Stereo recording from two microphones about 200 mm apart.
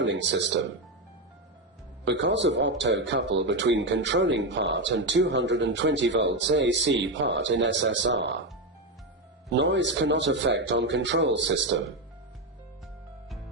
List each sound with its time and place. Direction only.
0.0 s speech: 65° right (ahead or behind)
2.0 s speech: 65° right (ahead or behind)
9.5 s speech: 60° right (ahead or behind)